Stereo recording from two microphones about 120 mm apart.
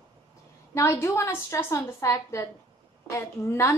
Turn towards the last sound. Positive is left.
turn(degrees=20)  # may be behind; listen again after turning